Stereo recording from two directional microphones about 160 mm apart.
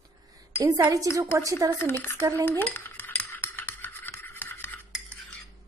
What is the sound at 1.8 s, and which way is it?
Speech, 15° left (ahead or behind).